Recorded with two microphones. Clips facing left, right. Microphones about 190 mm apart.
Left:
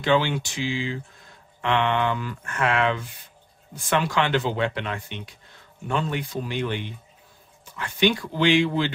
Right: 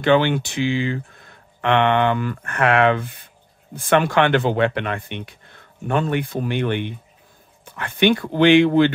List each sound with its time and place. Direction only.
0.0 s speech: 60° right (ahead or behind)